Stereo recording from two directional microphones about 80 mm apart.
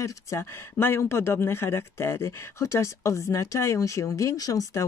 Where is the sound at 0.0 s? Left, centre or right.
Left.